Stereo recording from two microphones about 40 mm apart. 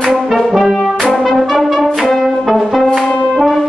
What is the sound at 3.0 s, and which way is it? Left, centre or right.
Brass instrument, left.